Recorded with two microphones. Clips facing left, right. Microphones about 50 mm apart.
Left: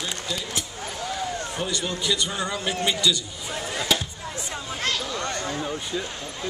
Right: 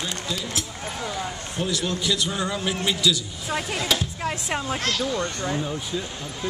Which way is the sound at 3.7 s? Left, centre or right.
Centre.